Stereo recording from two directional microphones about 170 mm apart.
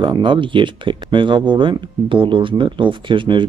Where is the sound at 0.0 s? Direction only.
30° right (ahead or behind).